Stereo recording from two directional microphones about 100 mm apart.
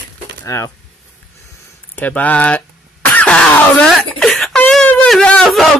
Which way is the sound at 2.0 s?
15° left (ahead or behind).